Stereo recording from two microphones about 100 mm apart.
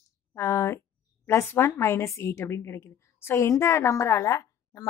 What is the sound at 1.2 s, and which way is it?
A woman's voice, 25° left (ahead or behind).